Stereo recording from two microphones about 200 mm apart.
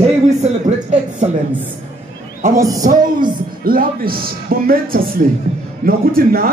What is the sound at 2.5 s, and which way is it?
Speech, 15° right (ahead or behind).